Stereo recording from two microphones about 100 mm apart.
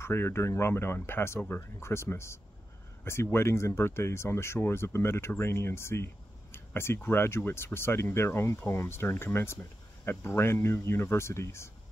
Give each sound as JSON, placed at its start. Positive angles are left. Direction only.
{"t": 0.0, "sound": "speech", "side_deg": 25}